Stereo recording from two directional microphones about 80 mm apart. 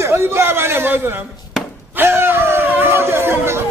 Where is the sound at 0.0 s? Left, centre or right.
Right.